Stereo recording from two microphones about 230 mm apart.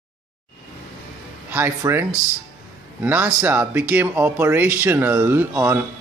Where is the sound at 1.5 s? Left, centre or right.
Centre.